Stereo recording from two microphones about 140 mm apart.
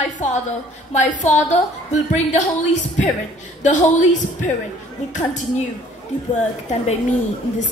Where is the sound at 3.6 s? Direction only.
60° left (ahead or behind).